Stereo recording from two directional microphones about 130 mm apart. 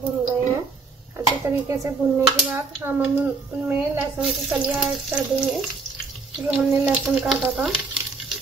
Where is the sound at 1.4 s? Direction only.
25° right (ahead or behind); by 5.5 s 5° right (ahead or behind).